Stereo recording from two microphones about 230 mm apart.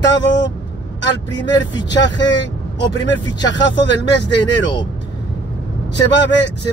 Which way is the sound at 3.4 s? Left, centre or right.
Left.